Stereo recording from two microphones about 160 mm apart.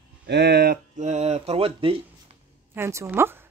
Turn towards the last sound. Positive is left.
turn(degrees=-15)  # may be behind; listen again after turning